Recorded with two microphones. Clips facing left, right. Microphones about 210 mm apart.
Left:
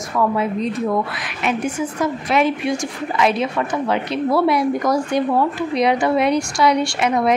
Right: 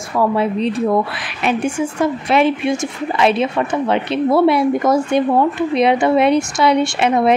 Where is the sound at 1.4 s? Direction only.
30° right (ahead or behind).